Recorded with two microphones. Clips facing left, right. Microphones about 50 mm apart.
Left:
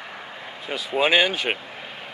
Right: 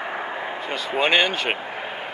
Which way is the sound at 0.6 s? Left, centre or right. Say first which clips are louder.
Left 1 dB; centre.